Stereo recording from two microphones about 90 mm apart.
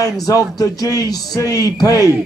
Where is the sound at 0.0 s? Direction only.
40° left (ahead or behind).